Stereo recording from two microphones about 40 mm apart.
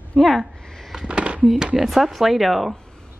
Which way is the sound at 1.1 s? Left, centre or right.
Right.